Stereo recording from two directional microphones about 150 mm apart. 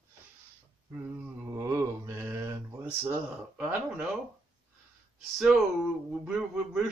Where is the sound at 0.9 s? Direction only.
15° right (ahead or behind).